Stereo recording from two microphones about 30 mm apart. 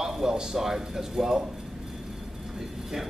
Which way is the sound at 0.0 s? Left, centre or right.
Centre.